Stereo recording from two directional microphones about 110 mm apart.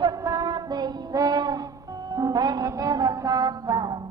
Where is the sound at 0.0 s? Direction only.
35° right (ahead or behind).